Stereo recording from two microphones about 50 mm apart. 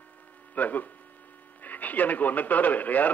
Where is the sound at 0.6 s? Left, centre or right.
Left.